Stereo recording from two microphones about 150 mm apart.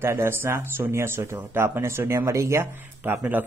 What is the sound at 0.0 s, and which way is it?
Speech, 15° right (ahead or behind).